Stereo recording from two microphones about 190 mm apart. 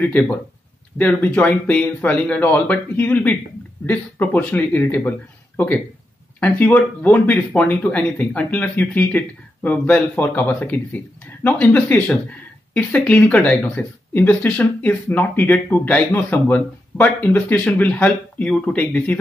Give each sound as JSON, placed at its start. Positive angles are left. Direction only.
{"t": 0.0, "sound": "speech", "side_deg": 10}
{"t": 6.4, "sound": "speech", "side_deg": 10}